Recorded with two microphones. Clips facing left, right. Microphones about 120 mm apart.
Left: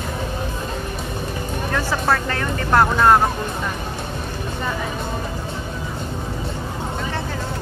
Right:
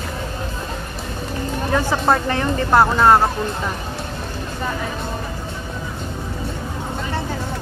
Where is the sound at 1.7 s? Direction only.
20° right (ahead or behind).